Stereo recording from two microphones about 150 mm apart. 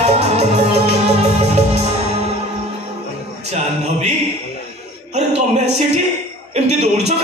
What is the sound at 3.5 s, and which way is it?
Music, 50° right (ahead or behind).